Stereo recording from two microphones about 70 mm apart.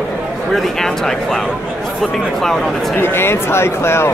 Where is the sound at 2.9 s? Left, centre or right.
Left.